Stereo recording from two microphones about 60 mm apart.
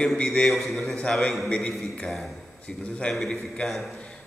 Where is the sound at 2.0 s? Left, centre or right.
Centre.